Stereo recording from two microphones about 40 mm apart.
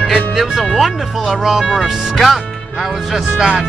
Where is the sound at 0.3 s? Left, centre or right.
Centre.